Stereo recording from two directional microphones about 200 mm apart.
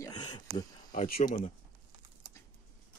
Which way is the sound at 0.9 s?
40° left (ahead or behind).